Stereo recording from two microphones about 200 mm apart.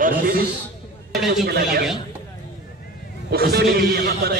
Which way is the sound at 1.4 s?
50° right (ahead or behind).